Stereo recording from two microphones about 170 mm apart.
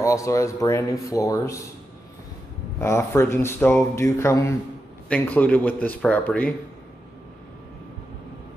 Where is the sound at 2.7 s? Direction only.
15° left (ahead or behind).